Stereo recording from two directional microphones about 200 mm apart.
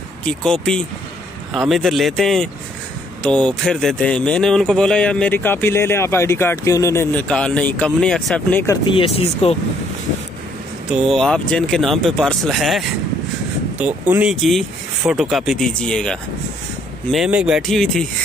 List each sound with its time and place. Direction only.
0.2 s speech: 5° left (ahead or behind)
8.8 s speech: 30° left (ahead or behind)
10.9 s speech: centre (ahead or behind)